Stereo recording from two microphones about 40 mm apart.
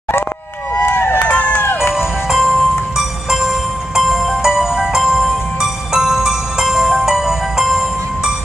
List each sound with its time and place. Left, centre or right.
0.8 s run: left
1.2 s music: left
2.0 s music: centre